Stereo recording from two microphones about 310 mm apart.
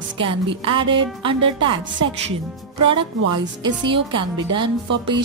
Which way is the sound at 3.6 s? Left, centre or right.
Centre.